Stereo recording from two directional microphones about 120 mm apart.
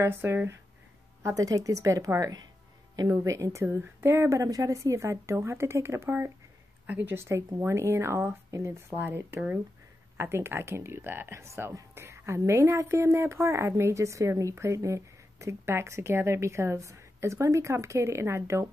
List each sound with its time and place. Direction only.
0.0 s speech: 20° right (ahead or behind)